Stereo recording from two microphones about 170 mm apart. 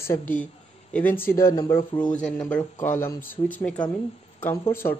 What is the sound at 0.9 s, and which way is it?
Speech, 10° left (ahead or behind).